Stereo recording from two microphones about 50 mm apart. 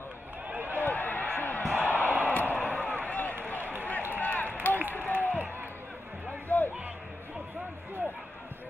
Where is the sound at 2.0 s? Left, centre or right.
Left.